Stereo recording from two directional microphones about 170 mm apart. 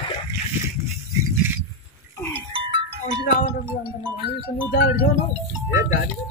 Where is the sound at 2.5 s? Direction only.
30° right (ahead or behind).